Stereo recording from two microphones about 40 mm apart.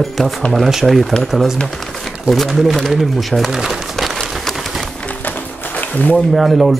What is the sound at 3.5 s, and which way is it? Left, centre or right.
Speech, centre.